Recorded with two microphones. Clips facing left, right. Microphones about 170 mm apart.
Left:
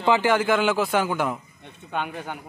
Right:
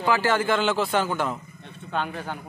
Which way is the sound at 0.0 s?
20° left (ahead or behind).